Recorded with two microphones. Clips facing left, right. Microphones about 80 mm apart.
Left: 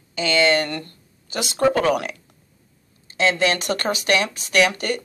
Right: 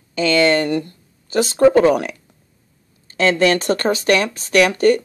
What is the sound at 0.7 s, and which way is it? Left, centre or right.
Speech, centre.